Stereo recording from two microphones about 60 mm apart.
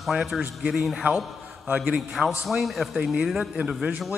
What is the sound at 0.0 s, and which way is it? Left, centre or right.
A man's voice, centre.